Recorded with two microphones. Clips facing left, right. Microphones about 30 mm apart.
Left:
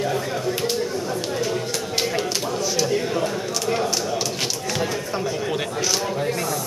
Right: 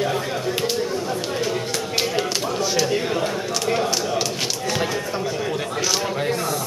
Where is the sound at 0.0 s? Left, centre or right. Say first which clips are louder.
Right 1 dB; centre.